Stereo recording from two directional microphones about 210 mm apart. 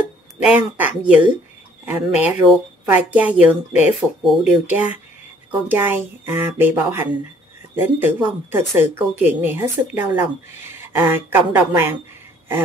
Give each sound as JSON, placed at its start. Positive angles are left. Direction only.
{"t": 0.4, "sound": "speech", "side_deg": -5}